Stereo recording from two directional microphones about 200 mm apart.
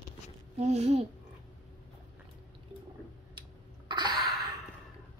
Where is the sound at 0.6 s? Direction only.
30° right (ahead or behind).